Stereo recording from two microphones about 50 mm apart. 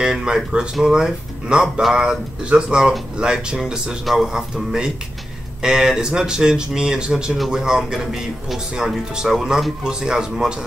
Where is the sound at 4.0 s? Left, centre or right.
Centre.